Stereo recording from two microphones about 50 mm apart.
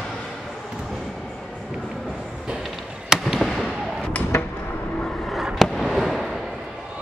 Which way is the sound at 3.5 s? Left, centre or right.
Centre.